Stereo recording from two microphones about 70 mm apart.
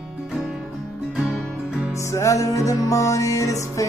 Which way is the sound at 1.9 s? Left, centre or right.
Left.